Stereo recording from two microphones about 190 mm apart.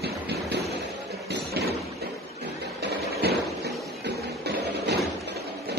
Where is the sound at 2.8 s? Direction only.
60° right (ahead or behind).